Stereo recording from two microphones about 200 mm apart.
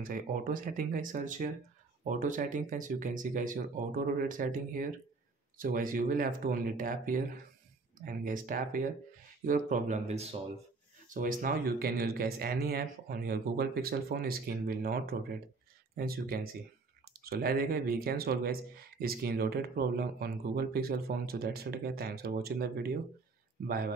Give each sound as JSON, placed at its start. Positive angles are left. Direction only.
{"t": 0.0, "sound": "speech", "side_deg": -45}